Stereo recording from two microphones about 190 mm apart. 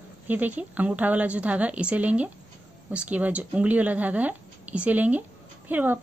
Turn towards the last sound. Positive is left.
turn(degrees=-10)  # may be behind; listen again after turning